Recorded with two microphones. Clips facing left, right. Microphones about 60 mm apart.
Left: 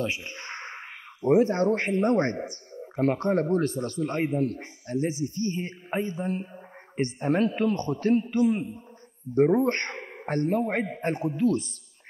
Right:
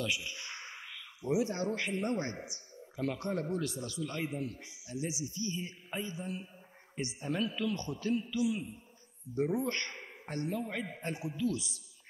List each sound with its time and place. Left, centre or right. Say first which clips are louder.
0.0 s speech: left 5 dB; left